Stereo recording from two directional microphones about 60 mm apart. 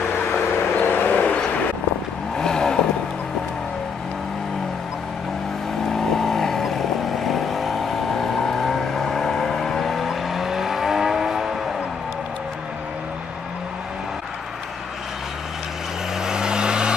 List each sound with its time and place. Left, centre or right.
0.7 s vehicle: left
2.3 s vehicle: centre
5.9 s vehicle: centre
16.2 s vehicle: centre